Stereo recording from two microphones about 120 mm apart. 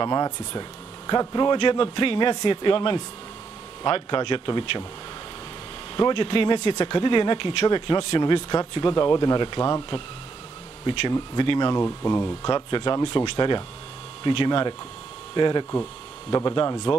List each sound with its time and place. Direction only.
0.0 s speech: 35° left (ahead or behind)
5.9 s speech: 40° left (ahead or behind); by 12.4 s 25° left (ahead or behind)
12.4 s speech: 40° left (ahead or behind)
15.7 s speech: 25° left (ahead or behind)